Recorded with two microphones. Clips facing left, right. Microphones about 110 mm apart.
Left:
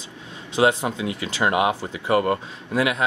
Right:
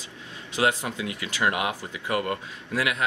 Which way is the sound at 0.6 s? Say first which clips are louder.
Left 5 dB; 25° left (ahead or behind).